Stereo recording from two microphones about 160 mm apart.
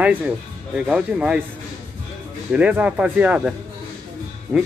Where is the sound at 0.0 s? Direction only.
10° right (ahead or behind).